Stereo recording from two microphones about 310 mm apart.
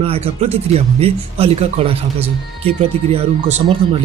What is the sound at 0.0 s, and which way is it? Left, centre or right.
Speech, centre.